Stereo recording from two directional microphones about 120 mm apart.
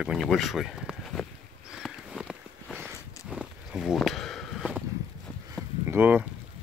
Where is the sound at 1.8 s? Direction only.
5° right (ahead or behind).